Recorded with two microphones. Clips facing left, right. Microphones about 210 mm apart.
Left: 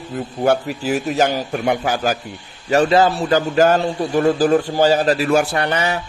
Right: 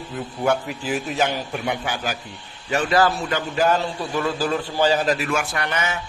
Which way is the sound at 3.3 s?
40° left (ahead or behind).